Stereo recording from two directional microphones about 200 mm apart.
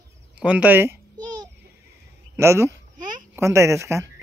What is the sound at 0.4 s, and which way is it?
Speech, 5° right (ahead or behind).